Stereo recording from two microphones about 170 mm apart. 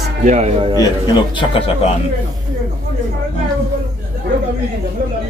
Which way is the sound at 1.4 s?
35° left (ahead or behind).